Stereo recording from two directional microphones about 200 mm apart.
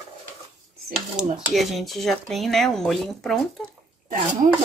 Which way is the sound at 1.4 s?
Centre (ahead or behind).